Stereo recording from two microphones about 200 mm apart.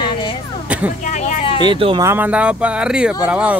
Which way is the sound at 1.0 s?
40° left (ahead or behind).